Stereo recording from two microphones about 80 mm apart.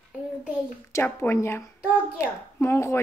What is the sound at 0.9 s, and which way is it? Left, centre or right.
A woman's voice, left.